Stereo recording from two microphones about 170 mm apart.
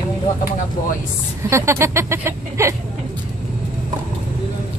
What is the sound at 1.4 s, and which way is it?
A woman's voice, 15° right (ahead or behind).